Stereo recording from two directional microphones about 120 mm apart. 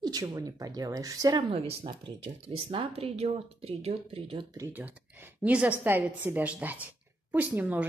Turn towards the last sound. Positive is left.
turn(degrees=-10)  # may be behind; listen again after turning